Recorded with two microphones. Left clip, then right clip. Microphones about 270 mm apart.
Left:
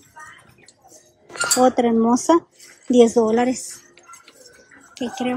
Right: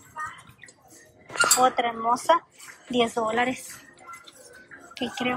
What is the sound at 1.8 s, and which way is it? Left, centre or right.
A woman's voice, left.